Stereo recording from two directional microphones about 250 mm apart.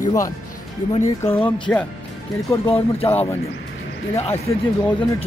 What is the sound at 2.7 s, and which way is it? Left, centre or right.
Speech, left.